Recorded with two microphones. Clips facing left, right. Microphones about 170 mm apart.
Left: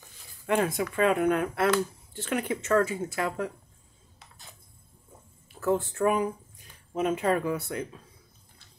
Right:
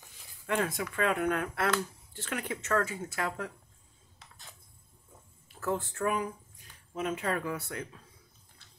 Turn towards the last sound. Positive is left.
turn(degrees=15)  # may be behind; listen again after turning